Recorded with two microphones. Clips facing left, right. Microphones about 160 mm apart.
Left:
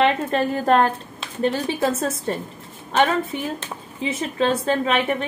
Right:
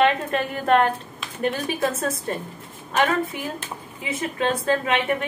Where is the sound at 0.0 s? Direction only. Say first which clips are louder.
Left 1 dB; 35° left (ahead or behind).